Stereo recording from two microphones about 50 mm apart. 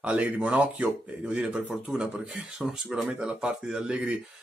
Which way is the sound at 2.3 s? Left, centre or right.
Centre.